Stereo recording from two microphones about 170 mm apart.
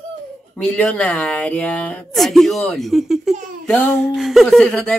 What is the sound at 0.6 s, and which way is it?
Speech, 5° left (ahead or behind).